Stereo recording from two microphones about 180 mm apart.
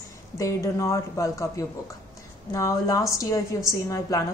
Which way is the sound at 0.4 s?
15° left (ahead or behind).